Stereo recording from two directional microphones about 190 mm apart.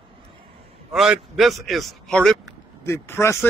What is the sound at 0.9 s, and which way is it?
A man's voice, centre (ahead or behind).